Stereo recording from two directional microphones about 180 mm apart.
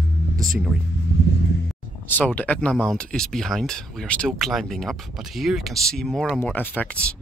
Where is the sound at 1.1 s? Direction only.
70° left (ahead or behind).